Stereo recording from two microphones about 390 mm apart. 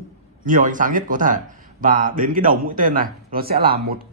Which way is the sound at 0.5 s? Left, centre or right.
Centre.